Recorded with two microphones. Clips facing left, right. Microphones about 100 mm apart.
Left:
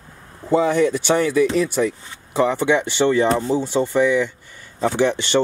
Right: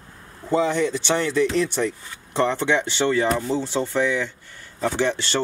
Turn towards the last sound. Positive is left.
turn(degrees=15)  # may be behind; listen again after turning